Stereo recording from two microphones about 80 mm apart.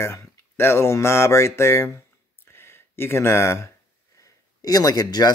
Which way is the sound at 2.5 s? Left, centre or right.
Left.